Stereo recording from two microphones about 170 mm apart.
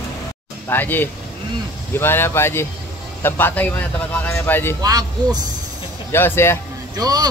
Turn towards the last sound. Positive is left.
turn(degrees=-20)  # may be behind; listen again after turning